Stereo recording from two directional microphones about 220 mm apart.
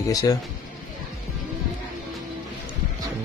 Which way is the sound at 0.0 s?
15° left (ahead or behind).